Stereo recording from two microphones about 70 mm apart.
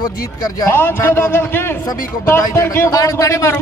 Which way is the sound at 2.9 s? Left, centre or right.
Left.